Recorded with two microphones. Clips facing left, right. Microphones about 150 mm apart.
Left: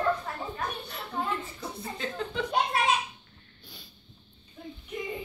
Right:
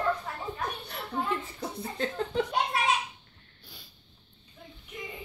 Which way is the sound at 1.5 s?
45° right (ahead or behind).